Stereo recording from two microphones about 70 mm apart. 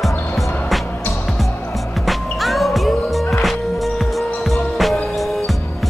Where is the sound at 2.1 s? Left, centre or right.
Centre.